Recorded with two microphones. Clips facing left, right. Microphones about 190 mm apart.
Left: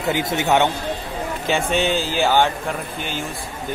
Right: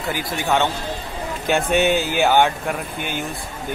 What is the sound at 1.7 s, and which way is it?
Speech, 55° right (ahead or behind).